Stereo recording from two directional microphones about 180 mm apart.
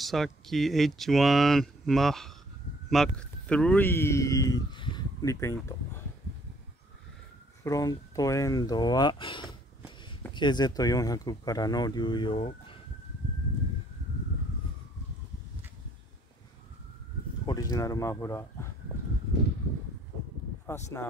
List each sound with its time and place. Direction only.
0.0 s speech: centre (ahead or behind)
7.6 s speech: 20° left (ahead or behind)
17.5 s speech: 20° left (ahead or behind)
20.6 s speech: 15° left (ahead or behind)